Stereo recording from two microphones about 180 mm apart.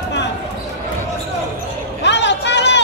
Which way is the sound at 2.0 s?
75° left (ahead or behind).